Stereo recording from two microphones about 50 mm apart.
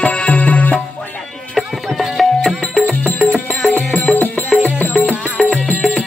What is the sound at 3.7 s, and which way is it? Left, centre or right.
Music, left.